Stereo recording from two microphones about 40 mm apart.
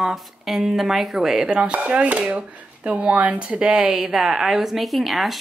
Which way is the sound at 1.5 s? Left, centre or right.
Right.